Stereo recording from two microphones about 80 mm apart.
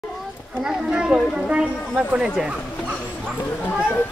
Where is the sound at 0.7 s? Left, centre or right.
Centre.